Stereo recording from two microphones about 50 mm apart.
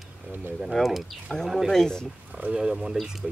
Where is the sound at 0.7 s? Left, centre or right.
Centre.